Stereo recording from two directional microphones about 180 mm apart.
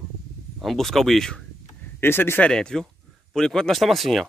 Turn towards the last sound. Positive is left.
turn(degrees=0)  # may be behind; listen again after turning